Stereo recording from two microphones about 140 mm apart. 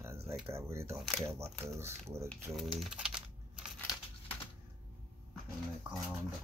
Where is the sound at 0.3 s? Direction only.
20° right (ahead or behind).